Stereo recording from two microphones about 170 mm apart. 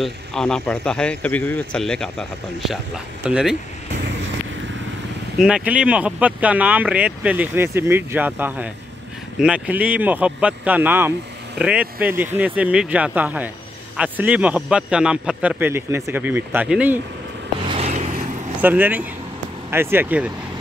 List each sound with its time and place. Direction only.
0.0 s a man's voice: 5° left (ahead or behind)
5.4 s speech: 5° right (ahead or behind)
17.6 s vehicle: 40° right (ahead or behind)
18.6 s speech: 10° right (ahead or behind)